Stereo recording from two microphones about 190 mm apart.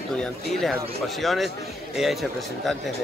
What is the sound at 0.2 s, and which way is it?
A man's voice, centre (ahead or behind).